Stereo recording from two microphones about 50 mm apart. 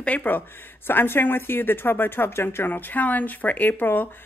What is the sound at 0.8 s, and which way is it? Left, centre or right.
Speech, left.